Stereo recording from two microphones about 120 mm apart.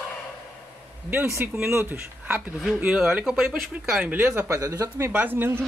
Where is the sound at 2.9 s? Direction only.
5° right (ahead or behind).